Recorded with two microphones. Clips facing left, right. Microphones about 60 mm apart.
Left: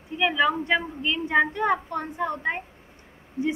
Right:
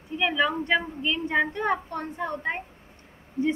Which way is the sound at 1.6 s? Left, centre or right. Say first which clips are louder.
Left 2 dB; left.